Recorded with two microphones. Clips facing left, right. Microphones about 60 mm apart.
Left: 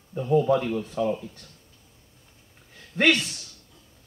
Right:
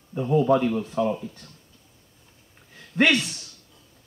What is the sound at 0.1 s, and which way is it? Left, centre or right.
Speech, right.